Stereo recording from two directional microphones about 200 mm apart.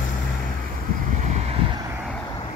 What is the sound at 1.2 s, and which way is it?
Vehicle, 30° right (ahead or behind).